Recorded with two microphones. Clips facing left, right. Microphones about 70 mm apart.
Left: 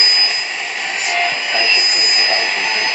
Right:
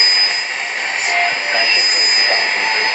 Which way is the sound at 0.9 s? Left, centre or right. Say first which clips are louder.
Right 1 dB; right.